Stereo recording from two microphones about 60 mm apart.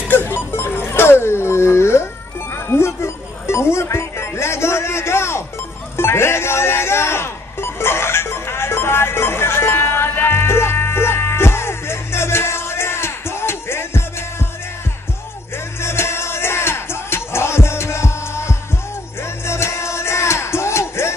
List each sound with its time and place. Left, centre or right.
0.1 s music: left
2.5 s a sound: left
5.9 s music: left
15.8 s music: left